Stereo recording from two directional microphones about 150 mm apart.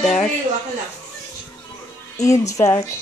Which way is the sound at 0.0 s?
5° left (ahead or behind).